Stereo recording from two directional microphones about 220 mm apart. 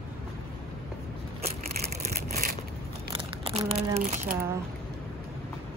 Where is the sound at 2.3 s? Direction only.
45° right (ahead or behind).